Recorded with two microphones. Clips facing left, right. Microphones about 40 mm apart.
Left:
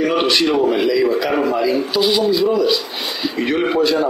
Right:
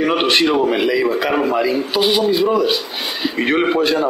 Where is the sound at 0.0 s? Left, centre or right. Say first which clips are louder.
Right 1 dB; right.